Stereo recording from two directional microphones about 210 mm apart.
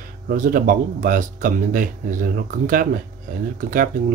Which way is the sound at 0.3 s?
45° right (ahead or behind).